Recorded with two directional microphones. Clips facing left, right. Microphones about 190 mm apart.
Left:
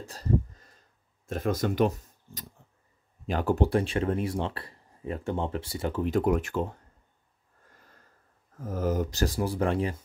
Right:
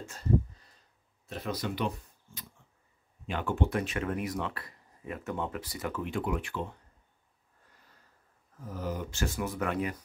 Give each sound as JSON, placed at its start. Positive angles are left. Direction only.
{"t": 0.0, "sound": "a sound", "side_deg": 35}
{"t": 1.2, "sound": "speech", "side_deg": 45}
{"t": 8.5, "sound": "speech", "side_deg": 45}